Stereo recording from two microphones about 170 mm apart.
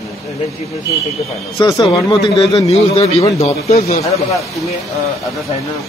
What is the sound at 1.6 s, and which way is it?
Speech, 20° left (ahead or behind).